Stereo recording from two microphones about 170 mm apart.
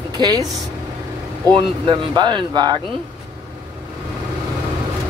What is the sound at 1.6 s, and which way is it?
Speech, 30° right (ahead or behind).